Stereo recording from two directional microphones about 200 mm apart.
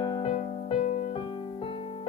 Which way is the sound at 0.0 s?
25° left (ahead or behind).